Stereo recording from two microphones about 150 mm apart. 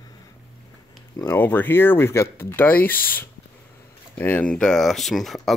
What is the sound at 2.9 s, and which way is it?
Speech, 75° left (ahead or behind).